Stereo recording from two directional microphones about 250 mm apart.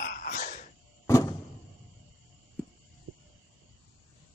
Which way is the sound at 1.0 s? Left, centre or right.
Centre.